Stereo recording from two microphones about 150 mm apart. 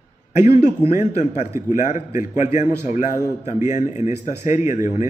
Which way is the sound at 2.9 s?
55° left (ahead or behind).